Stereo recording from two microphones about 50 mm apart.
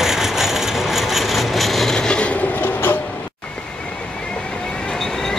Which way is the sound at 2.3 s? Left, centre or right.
Left.